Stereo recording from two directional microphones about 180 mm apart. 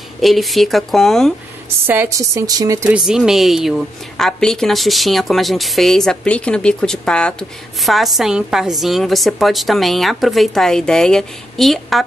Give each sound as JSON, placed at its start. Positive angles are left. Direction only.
{"t": 0.2, "sound": "a woman's voice", "side_deg": 0}
{"t": 1.9, "sound": "a woman's voice", "side_deg": -15}
{"t": 2.9, "sound": "a woman's voice", "side_deg": -5}